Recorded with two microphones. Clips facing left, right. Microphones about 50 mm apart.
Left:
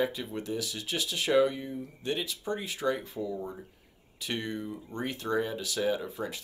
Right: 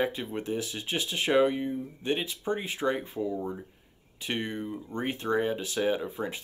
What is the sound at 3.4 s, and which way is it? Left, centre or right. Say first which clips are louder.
Speech: right 4 dB; centre.